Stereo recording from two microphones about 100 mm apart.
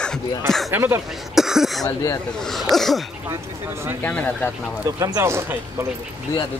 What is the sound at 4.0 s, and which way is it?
Speech, 15° left (ahead or behind).